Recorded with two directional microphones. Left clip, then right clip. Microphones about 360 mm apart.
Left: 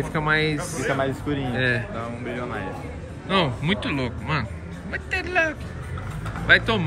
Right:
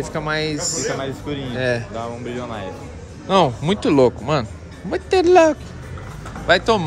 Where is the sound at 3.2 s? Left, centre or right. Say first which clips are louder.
Right 6 dB; centre.